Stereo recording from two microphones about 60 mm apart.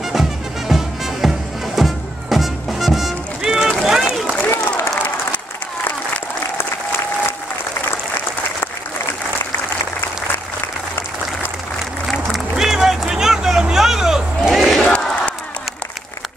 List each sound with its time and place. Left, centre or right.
0.1 s music: centre
4.5 s applause: left
4.9 s applause: left
12.1 s run: centre